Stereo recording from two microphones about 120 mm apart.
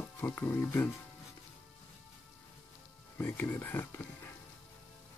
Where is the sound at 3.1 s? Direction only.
15° left (ahead or behind).